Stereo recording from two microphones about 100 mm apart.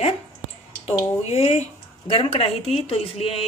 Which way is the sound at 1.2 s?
85° left.